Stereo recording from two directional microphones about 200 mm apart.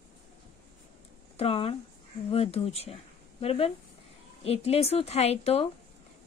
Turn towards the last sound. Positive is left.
turn(degrees=30)  # may be behind; listen again after turning